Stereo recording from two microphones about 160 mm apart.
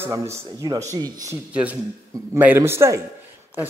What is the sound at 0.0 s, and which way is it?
Speech, 20° right (ahead or behind).